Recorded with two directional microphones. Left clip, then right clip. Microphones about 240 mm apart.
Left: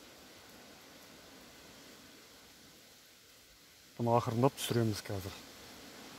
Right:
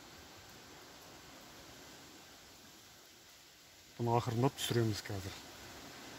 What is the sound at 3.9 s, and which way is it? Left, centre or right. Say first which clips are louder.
Speech: left 4 dB; centre.